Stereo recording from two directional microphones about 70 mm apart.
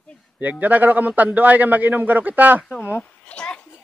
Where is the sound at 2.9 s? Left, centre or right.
Centre.